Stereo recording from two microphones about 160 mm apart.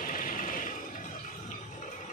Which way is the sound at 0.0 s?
55° left (ahead or behind).